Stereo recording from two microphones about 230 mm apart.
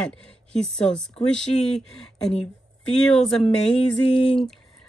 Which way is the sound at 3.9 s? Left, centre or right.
Left.